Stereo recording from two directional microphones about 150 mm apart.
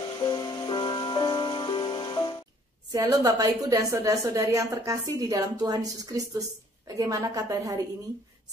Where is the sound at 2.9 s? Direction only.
25° right (ahead or behind).